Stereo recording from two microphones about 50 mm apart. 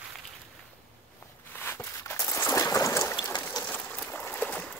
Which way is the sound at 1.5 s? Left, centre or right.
Left.